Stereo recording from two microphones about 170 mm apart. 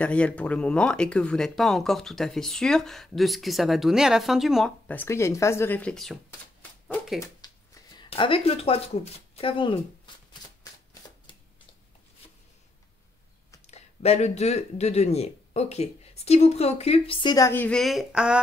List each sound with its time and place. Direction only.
0.0 s speech: 5° left (ahead or behind)
4.8 s speech: 10° left (ahead or behind)
7.2 s a sound: 20° left (ahead or behind)
8.1 s speech: 35° left (ahead or behind)
13.7 s speech: 40° left (ahead or behind); by 18.4 s 5° right (ahead or behind)